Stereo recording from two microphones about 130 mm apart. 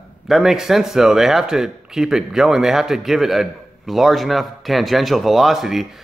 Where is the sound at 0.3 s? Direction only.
5° right (ahead or behind).